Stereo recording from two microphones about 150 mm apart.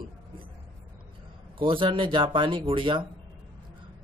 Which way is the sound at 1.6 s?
35° right (ahead or behind).